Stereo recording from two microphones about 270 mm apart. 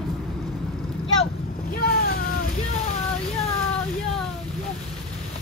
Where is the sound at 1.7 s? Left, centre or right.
Left.